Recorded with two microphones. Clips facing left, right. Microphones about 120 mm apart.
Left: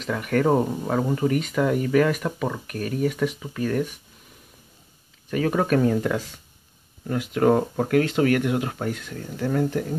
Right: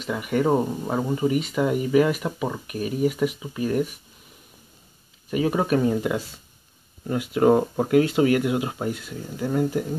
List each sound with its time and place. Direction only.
0.0 s speech: 5° right (ahead or behind)
5.3 s speech: 10° right (ahead or behind)